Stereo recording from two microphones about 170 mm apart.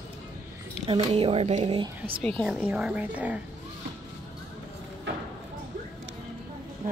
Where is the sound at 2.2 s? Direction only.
5° left (ahead or behind).